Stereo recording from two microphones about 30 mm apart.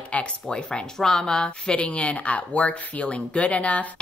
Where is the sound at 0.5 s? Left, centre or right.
Left.